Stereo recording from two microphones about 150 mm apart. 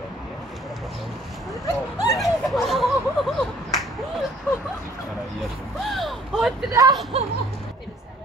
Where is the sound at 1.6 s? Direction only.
20° left (ahead or behind).